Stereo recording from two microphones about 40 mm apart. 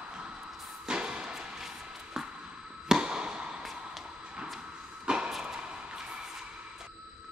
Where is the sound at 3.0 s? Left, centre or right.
Right.